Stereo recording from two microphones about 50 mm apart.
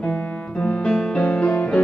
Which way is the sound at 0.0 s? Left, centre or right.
Left.